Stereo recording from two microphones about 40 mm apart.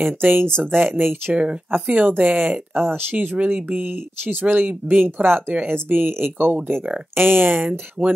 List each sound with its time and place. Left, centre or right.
0.0 s speech: right
0.5 s speech: centre
0.7 s speech: right
1.3 s speech: right
1.9 s speech: right
3.9 s speech: right
5.5 s speech: right